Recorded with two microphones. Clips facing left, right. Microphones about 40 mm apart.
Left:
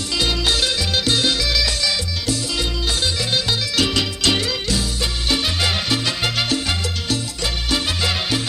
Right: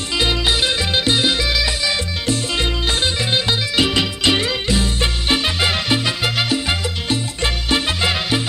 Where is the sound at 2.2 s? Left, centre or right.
Right; by 6.8 s centre.